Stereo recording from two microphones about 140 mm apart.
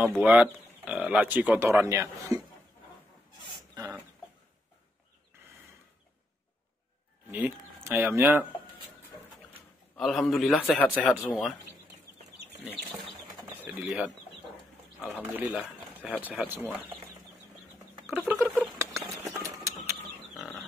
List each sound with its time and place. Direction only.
0.2 s speech: 10° right (ahead or behind)
7.2 s speech: 10° right (ahead or behind)
9.9 s a man's voice: centre (ahead or behind)
10.8 s a man's voice: 10° left (ahead or behind)
13.7 s a man's voice: 5° right (ahead or behind)
15.1 s speech: 10° right (ahead or behind)
18.2 s a sound: 10° right (ahead or behind)